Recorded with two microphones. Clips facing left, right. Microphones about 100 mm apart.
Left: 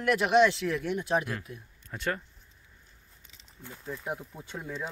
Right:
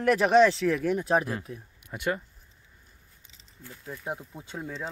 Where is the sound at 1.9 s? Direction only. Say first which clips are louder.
Right 3 dB; 10° right (ahead or behind).